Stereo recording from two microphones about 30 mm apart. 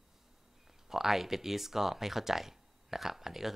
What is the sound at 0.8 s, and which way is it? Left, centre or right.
Speech, centre.